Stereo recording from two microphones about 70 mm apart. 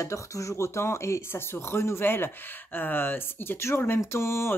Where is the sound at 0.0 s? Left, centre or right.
Left.